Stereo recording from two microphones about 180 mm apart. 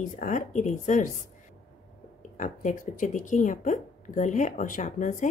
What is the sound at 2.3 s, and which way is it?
A woman's voice, 45° left (ahead or behind).